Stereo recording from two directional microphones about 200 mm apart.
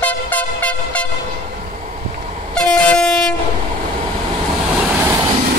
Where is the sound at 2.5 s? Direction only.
5° left (ahead or behind).